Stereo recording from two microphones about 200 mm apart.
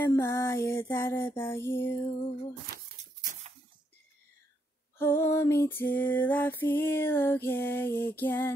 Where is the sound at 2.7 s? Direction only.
45° right (ahead or behind).